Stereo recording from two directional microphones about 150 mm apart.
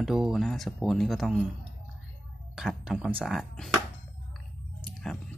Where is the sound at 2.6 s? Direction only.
5° right (ahead or behind).